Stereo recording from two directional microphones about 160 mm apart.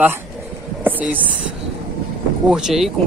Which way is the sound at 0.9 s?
10° right (ahead or behind).